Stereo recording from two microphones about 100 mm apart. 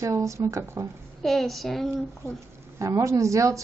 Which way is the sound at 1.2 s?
Centre (ahead or behind).